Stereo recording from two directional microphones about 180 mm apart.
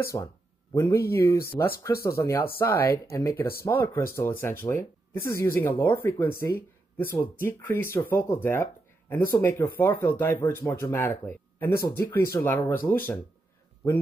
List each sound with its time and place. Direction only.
0.1 s speech: 20° left (ahead or behind)